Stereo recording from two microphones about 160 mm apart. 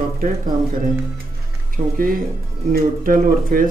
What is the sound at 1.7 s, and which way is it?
Speech, 60° right (ahead or behind).